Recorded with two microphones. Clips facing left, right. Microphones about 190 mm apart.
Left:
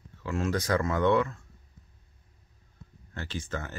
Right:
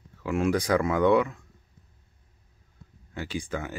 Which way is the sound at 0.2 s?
15° right (ahead or behind).